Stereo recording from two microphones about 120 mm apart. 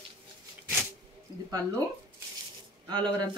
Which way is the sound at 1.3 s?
35° right (ahead or behind).